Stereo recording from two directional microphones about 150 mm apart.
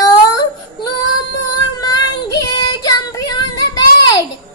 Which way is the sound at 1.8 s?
25° left (ahead or behind).